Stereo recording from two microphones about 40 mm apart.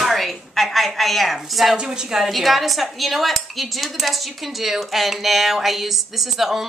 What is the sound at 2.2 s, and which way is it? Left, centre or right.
Speech, centre.